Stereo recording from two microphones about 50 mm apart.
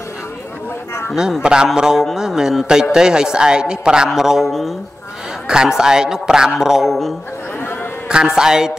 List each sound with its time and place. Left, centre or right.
1.4 s a man's voice: centre
5.5 s a man's voice: centre
8.1 s a man's voice: centre